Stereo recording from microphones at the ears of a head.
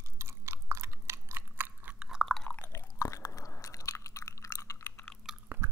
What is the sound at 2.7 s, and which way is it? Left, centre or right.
Chewing, left.